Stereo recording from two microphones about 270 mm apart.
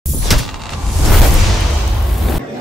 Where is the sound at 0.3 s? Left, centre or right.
Centre.